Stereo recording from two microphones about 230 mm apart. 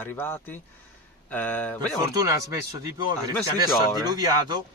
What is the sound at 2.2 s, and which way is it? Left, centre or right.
Speech, centre.